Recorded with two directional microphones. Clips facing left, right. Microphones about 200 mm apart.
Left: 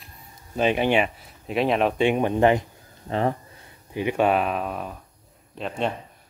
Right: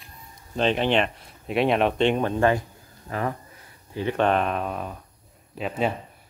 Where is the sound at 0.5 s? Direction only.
10° left (ahead or behind); by 3.3 s 30° left (ahead or behind).